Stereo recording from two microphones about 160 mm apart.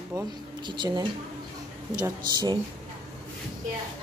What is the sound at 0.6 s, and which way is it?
A woman's voice, 30° right (ahead or behind).